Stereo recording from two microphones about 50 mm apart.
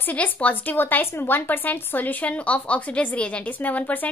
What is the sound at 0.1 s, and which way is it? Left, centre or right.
Speech, left.